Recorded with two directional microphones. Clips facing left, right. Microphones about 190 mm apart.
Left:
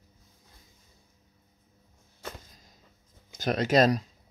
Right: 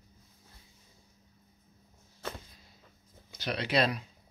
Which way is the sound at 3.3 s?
45° left (ahead or behind).